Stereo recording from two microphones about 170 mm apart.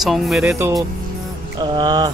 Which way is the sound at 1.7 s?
20° right (ahead or behind).